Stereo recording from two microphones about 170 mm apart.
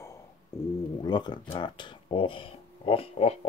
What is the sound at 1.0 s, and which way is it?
Speech, 25° left (ahead or behind).